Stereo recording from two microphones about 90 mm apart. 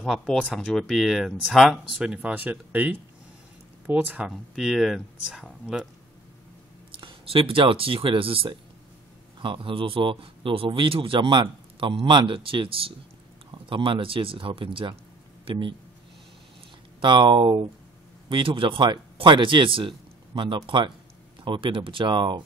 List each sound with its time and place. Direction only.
0.0 s speech: 5° left (ahead or behind); by 4.3 s 15° right (ahead or behind)
4.3 s speech: 5° right (ahead or behind)
7.0 s speech: 90° right
9.4 s speech: 65° right (ahead or behind); by 12.9 s 85° right
13.5 s speech: 65° right (ahead or behind)
15.5 s speech: 80° right
17.0 s speech: 60° right (ahead or behind)